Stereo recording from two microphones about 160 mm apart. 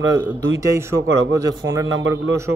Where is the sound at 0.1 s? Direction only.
15° right (ahead or behind).